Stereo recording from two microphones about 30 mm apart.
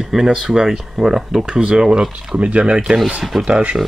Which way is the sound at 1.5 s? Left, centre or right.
Right.